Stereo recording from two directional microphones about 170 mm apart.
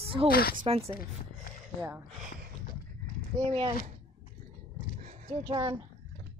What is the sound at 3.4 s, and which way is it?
Speech, 35° right (ahead or behind).